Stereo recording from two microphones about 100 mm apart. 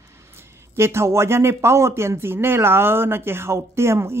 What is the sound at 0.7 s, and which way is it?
Speech, 25° right (ahead or behind).